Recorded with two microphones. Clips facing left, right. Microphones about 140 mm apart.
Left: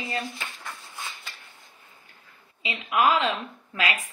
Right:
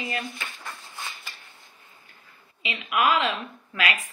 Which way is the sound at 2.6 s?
30° left (ahead or behind).